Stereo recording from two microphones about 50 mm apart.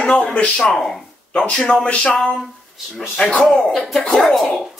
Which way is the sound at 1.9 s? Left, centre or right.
Left.